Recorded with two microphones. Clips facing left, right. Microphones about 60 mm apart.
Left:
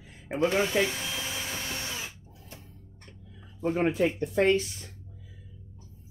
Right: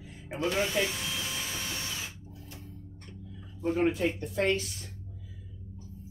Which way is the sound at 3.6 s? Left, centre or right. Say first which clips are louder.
Left 2 dB; left.